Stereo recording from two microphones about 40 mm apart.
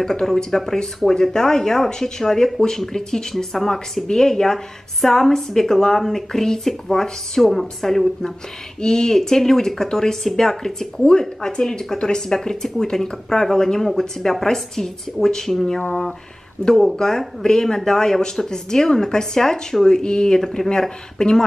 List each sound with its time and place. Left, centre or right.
0.0 s a woman's voice: centre
16.6 s a woman's voice: left